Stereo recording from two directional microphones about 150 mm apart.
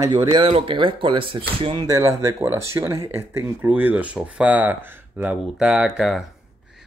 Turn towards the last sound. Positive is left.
turn(degrees=0)  # may be behind; listen again after turning